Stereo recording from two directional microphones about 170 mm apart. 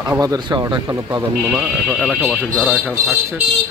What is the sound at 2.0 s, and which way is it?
Speech, centre (ahead or behind).